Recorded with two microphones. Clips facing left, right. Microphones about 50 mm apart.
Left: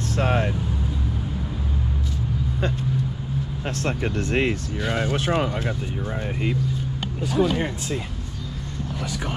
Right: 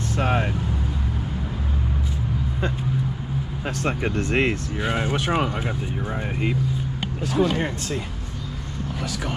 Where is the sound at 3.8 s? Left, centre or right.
Centre.